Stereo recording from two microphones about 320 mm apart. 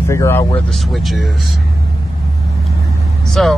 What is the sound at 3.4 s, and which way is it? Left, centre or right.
Speech, centre.